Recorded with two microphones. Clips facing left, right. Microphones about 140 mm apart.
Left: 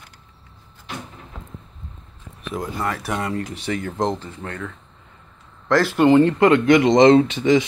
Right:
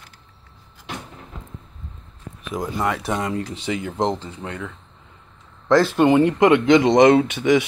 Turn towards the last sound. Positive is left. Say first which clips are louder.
# left 1 dB
turn(degrees=-15)  # may be behind; listen again after turning